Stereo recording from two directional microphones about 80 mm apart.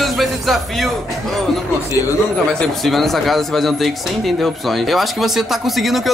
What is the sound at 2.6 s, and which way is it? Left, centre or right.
Speech, centre.